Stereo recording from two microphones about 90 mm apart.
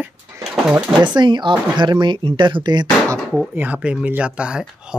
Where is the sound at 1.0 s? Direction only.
55° right (ahead or behind).